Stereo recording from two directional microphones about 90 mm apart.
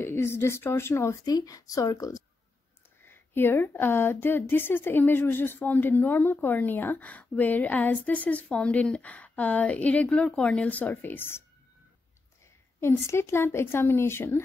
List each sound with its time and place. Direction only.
0.0 s speech: 25° left (ahead or behind)
1.2 s a woman's voice: 45° left (ahead or behind)
3.0 s speech: 25° left (ahead or behind)
12.8 s speech: 30° left (ahead or behind)